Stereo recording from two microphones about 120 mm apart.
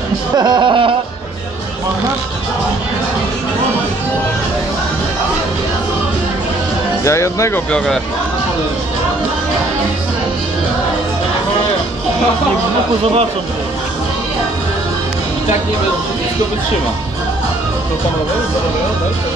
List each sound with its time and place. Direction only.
0.4 s a sound: 40° right (ahead or behind)
7.1 s speech: 25° left (ahead or behind)
7.7 s speech: 5° left (ahead or behind)